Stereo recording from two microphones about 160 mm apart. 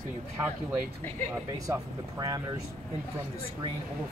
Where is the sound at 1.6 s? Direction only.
25° right (ahead or behind).